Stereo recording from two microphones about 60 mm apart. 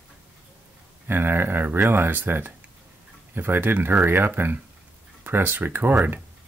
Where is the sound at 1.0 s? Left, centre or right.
Right.